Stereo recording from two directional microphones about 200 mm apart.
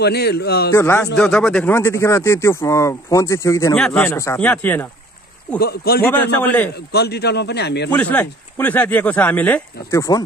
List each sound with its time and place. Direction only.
0.0 s a man's voice: 55° left (ahead or behind)
0.7 s speech: 10° left (ahead or behind)
5.6 s a man's voice: 50° left (ahead or behind)
6.0 s speech: 5° left (ahead or behind)
6.9 s a man's voice: 55° left (ahead or behind)
7.9 s speech: 10° left (ahead or behind)